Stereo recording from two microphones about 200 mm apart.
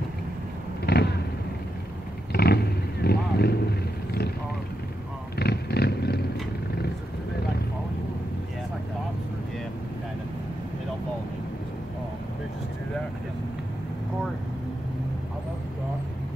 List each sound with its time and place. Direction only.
0.8 s vehicle: 55° left (ahead or behind)
2.3 s vehicle: 50° left (ahead or behind)
5.4 s vehicle: 50° left (ahead or behind)